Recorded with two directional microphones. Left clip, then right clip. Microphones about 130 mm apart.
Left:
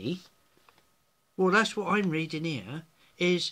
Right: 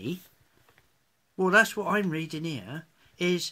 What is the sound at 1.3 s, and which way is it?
Speech, 5° right (ahead or behind).